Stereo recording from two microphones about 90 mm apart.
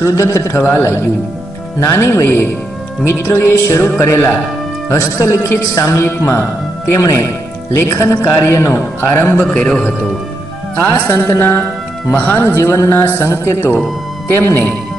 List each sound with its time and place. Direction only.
0.0 s a man's voice: 35° left (ahead or behind); by 9.9 s 15° left (ahead or behind)
10.8 s a man's voice: 25° left (ahead or behind)